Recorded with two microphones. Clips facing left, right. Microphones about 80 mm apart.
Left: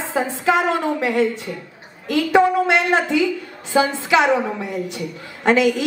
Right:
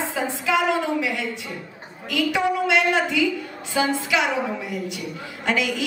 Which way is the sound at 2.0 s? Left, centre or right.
Left.